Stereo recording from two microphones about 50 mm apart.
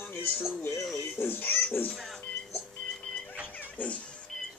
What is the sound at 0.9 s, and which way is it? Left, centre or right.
Speech, left.